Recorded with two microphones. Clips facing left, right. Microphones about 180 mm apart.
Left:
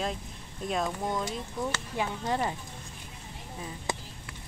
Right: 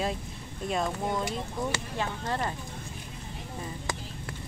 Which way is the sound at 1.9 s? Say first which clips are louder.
Left 1 dB; 15° left (ahead or behind).